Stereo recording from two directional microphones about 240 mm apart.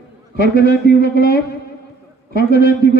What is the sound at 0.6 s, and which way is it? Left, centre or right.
Speech, left.